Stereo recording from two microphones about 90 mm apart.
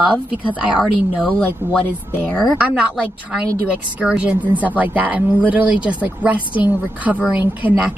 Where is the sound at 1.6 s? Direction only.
25° right (ahead or behind).